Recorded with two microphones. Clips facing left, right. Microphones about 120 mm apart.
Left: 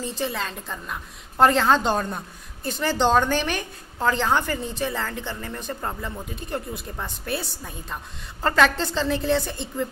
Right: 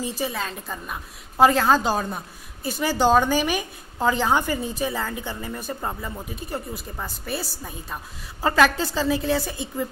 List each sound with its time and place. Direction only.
0.0 s a woman's voice: 10° right (ahead or behind)